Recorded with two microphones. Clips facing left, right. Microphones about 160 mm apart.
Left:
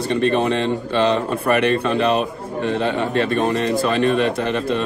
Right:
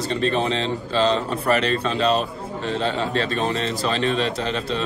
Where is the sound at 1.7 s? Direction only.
60° left (ahead or behind).